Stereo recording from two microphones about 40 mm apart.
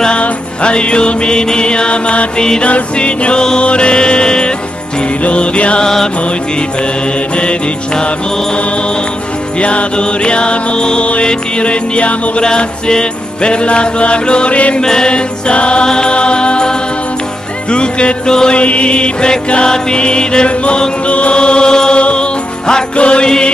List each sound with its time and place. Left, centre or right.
0.2 s music: left
7.3 s music: left
9.6 s music: left
14.8 s music: centre
18.6 s music: left
21.1 s chant: left
22.0 s music: left